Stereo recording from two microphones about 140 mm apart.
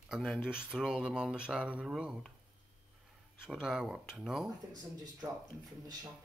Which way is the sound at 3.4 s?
5° right (ahead or behind).